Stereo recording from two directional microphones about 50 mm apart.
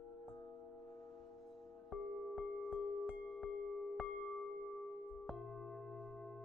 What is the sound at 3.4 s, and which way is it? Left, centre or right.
Music, centre.